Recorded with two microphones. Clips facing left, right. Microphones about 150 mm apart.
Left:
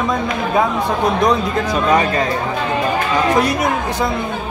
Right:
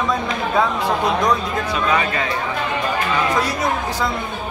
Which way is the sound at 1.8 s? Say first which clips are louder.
Left 5 dB; 40° left (ahead or behind).